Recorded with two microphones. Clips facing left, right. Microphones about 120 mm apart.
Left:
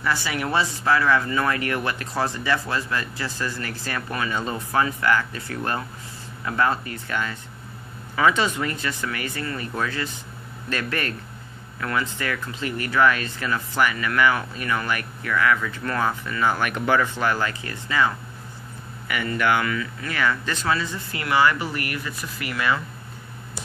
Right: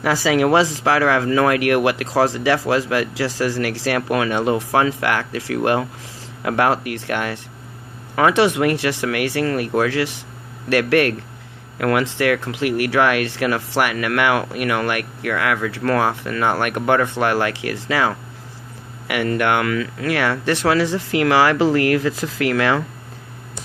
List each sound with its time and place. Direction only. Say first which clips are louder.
0.0 s speech: right 9 dB; 90° right
10.7 s speech: right 12 dB; 75° right (ahead or behind); by 18.1 s 90° right
19.0 s speech: right 4 dB; 70° right (ahead or behind); by 22.8 s 90° right